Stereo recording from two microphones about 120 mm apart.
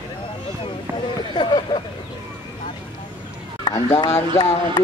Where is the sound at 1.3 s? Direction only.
40° left (ahead or behind).